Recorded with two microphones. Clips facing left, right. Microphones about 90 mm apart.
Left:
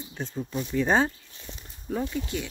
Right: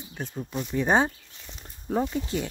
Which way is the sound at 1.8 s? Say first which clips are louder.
Right 3 dB; 35° right (ahead or behind).